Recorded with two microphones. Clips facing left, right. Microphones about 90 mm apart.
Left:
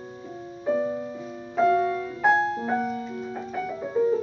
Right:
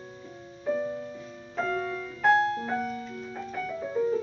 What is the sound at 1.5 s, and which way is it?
Music, 10° left (ahead or behind).